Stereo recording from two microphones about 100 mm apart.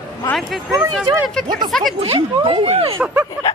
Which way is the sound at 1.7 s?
Centre (ahead or behind).